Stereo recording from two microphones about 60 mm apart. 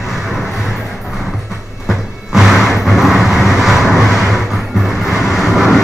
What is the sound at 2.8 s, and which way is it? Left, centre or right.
Vehicle, centre.